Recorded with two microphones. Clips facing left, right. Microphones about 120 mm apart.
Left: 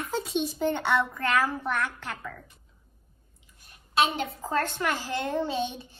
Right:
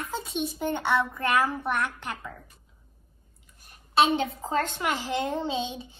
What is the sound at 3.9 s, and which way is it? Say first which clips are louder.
A child's voice: right 3 dB; 25° right (ahead or behind).